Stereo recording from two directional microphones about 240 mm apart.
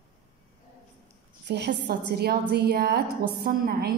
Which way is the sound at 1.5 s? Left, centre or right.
Right.